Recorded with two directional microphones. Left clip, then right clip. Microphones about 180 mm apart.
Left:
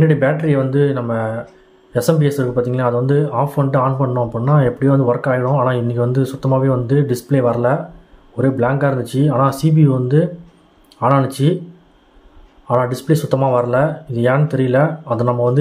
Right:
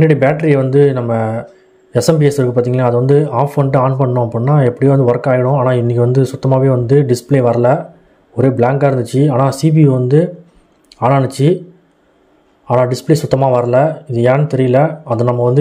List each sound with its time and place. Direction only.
0.0 s speech: 35° right (ahead or behind)
12.6 s speech: 30° right (ahead or behind)